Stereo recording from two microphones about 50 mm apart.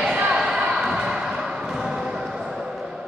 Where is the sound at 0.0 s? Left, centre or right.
Centre.